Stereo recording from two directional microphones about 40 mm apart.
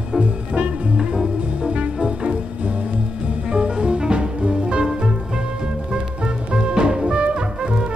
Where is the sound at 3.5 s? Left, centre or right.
Right.